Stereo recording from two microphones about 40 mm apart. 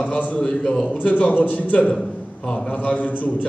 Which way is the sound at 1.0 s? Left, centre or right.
Left.